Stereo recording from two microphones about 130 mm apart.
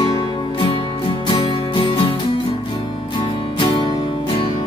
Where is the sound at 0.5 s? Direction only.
40° left (ahead or behind).